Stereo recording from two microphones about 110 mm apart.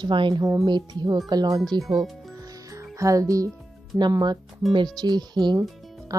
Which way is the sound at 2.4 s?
35° right (ahead or behind).